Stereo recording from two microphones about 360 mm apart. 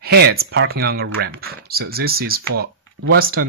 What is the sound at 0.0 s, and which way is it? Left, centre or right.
Speech, right.